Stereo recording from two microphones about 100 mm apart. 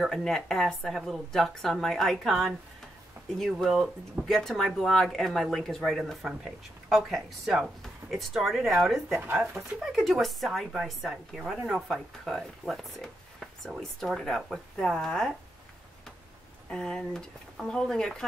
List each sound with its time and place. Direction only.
0.0 s speech: 5° left (ahead or behind)
16.6 s speech: 10° left (ahead or behind)